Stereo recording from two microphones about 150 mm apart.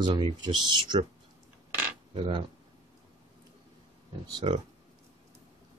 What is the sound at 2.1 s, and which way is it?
Speech, 35° right (ahead or behind).